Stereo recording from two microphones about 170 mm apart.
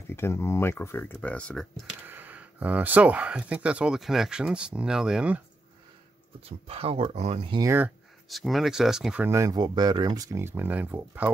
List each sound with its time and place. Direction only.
0.1 s speech: 15° left (ahead or behind)
2.0 s speech: 10° right (ahead or behind)
6.7 s speech: 35° right (ahead or behind)
7.6 s speech: 10° right (ahead or behind)
8.3 s speech: centre (ahead or behind)